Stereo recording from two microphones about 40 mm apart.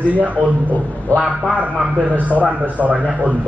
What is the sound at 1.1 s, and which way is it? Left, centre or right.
Speech, left.